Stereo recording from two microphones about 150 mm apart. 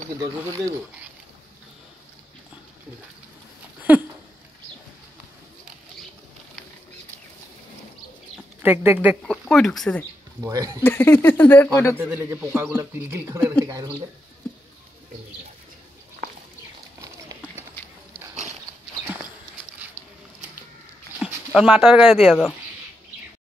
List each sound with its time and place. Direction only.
3.9 s a sound: 10° right (ahead or behind)
8.6 s a man's voice: 10° right (ahead or behind)
9.3 s speech: centre (ahead or behind)
10.4 s speech: 20° right (ahead or behind)
10.8 s speech: 15° left (ahead or behind)
12.0 s a man's voice: 15° right (ahead or behind)
17.0 s run: 20° right (ahead or behind)
21.2 s speech: 5° right (ahead or behind)